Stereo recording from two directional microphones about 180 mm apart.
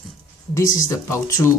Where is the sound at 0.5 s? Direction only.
15° left (ahead or behind).